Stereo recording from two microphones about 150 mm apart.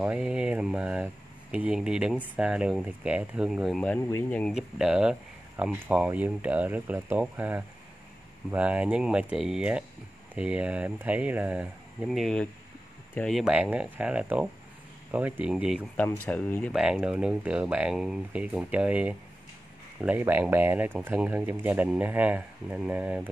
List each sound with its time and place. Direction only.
0.0 s speech: 5° right (ahead or behind)
4.0 s speech: 15° left (ahead or behind)
4.5 s speech: 5° right (ahead or behind)
16.0 s speech: 10° left (ahead or behind)
16.7 s speech: 5° right (ahead or behind)